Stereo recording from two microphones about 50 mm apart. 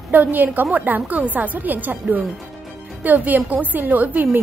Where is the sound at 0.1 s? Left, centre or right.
Right.